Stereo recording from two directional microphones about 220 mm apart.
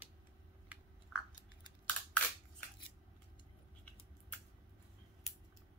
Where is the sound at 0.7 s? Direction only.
5° right (ahead or behind).